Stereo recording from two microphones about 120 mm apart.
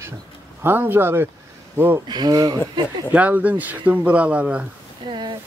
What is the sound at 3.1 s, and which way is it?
Speech, 15° right (ahead or behind).